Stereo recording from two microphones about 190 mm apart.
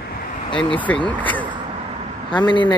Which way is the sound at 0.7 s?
10° left (ahead or behind).